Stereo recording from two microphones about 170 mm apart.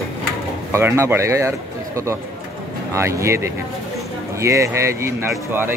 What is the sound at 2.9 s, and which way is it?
Speech, 15° right (ahead or behind).